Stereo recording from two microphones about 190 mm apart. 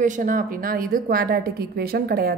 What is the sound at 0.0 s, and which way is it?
A woman's voice, 45° right (ahead or behind).